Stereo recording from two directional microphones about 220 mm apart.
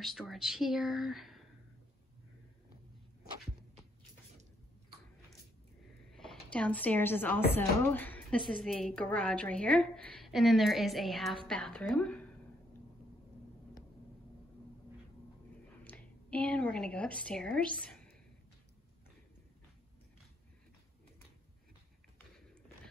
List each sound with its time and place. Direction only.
0.0 s a woman's voice: centre (ahead or behind)
6.1 s a woman's voice: centre (ahead or behind)
15.8 s a woman's voice: 5° left (ahead or behind)